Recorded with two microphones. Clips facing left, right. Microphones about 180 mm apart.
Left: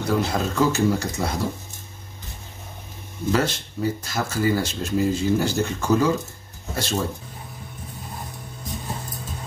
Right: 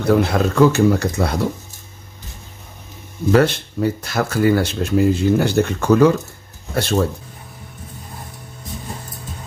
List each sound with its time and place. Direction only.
0.0 s speech: 60° right (ahead or behind)
3.3 s speech: 60° right (ahead or behind)